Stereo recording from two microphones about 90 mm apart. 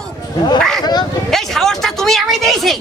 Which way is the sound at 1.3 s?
5° left (ahead or behind).